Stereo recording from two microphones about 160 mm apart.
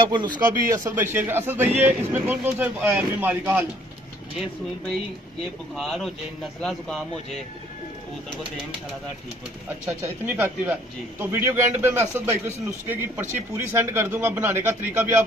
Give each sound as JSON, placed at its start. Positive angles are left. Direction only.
{"t": 0.0, "sound": "speech", "side_deg": -30}
{"t": 0.7, "sound": "a man's voice", "side_deg": -15}
{"t": 5.8, "sound": "a man's voice", "side_deg": 0}
{"t": 9.8, "sound": "a man's voice", "side_deg": -15}